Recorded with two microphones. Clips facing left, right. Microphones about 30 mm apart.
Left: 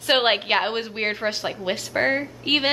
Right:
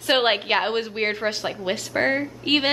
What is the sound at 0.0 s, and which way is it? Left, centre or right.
A woman's voice, centre.